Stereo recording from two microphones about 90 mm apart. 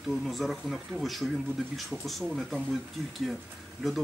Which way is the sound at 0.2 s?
Centre (ahead or behind).